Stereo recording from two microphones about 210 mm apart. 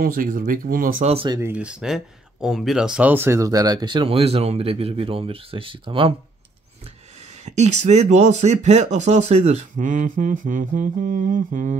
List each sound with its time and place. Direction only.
0.0 s speech: 40° right (ahead or behind)
1.1 s speech: 25° right (ahead or behind)
1.4 s speech: 5° right (ahead or behind); by 11.7 s 40° right (ahead or behind)